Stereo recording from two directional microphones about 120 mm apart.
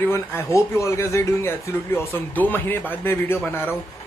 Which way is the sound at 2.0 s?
15° left (ahead or behind).